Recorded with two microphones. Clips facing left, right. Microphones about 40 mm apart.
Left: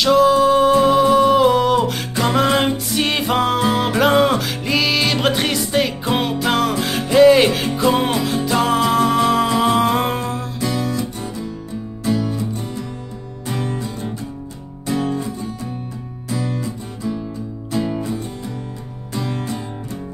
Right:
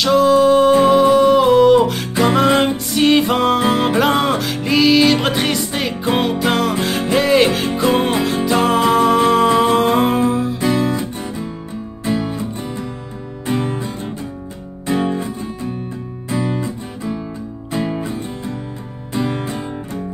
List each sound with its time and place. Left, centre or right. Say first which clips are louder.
0.0 s music: right 1 dB; centre
10.6 s guitar: even; right
12.0 s music: even; right